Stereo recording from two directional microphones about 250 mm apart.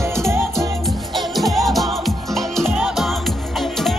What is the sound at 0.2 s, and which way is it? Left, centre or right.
Music, centre.